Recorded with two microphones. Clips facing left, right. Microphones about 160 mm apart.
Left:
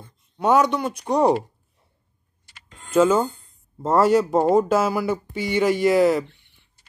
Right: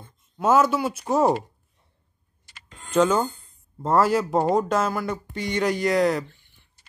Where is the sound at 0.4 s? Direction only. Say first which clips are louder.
Left 1 dB; centre (ahead or behind).